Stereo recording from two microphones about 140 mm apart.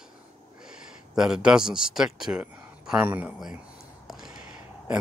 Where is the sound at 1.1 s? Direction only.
5° right (ahead or behind).